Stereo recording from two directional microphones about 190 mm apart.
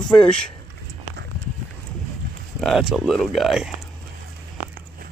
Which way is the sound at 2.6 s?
Centre (ahead or behind).